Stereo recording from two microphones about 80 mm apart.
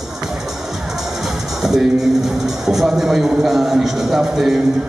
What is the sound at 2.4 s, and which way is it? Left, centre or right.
A man's voice, centre.